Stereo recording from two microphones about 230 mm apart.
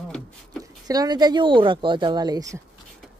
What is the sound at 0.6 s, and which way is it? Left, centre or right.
Speech, centre.